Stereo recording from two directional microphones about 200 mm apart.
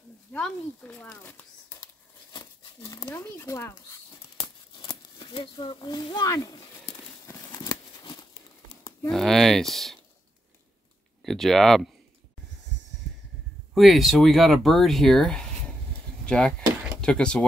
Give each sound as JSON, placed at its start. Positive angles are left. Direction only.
{"t": 0.3, "sound": "speech", "side_deg": 5}
{"t": 4.4, "sound": "a sound", "side_deg": 25}
{"t": 9.1, "sound": "speech", "side_deg": 0}
{"t": 11.2, "sound": "speech", "side_deg": 0}
{"t": 13.7, "sound": "speech", "side_deg": 0}